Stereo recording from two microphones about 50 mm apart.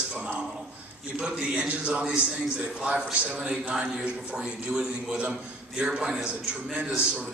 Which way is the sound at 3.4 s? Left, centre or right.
Centre.